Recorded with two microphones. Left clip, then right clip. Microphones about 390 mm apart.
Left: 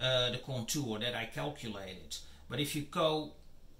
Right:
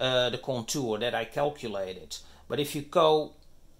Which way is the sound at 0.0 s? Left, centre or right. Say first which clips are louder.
Right 6 dB; centre.